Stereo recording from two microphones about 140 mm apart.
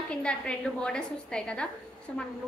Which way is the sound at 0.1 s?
5° left (ahead or behind).